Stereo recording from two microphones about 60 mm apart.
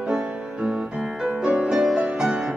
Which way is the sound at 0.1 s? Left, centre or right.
Centre.